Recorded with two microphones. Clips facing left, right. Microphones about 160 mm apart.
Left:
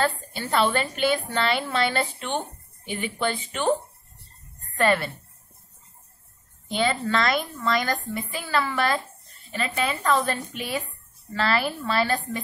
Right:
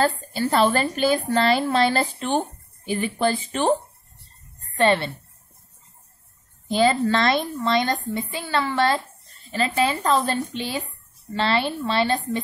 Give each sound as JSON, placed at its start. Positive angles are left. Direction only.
{"t": 0.0, "sound": "a woman's voice", "side_deg": -35}
{"t": 4.7, "sound": "a woman's voice", "side_deg": -25}
{"t": 6.7, "sound": "a woman's voice", "side_deg": -35}